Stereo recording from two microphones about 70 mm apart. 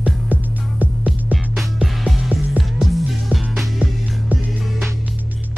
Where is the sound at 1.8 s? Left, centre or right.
Centre.